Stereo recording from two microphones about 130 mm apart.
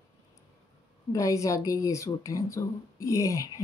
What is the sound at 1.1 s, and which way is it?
A woman's voice, 25° left (ahead or behind).